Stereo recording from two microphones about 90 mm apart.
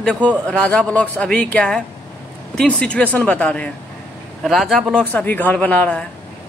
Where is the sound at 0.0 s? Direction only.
10° left (ahead or behind).